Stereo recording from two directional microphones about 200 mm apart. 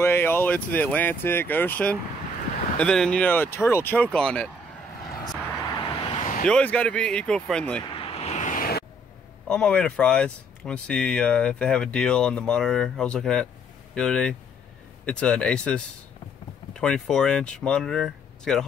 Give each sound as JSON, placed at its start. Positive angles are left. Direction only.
{"t": 0.0, "sound": "speech", "side_deg": 10}
{"t": 5.2, "sound": "vehicle", "side_deg": 20}
{"t": 6.4, "sound": "speech", "side_deg": 5}
{"t": 7.9, "sound": "a sound", "side_deg": 30}
{"t": 9.5, "sound": "speech", "side_deg": 5}